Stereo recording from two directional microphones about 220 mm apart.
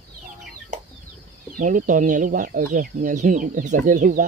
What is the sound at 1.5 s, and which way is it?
Speech, 35° right (ahead or behind).